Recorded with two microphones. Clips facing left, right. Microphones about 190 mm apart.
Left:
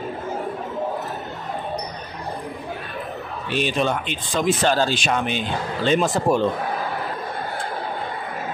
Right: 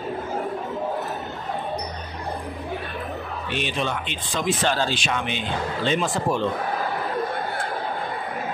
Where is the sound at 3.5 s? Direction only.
40° left (ahead or behind).